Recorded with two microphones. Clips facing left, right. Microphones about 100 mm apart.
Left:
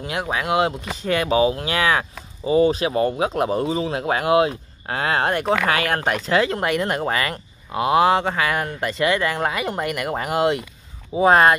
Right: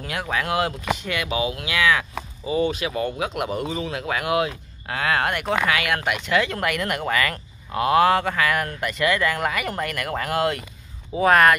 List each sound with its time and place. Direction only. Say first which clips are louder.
0.0 s speech: left 2 dB; 25° left (ahead or behind)
0.9 s speech: left 7 dB; 35° left (ahead or behind)